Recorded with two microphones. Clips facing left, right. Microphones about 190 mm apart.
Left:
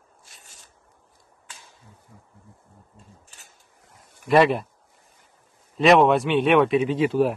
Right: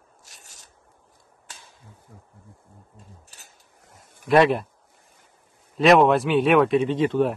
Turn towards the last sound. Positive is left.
turn(degrees=5)  # may be behind; listen again after turning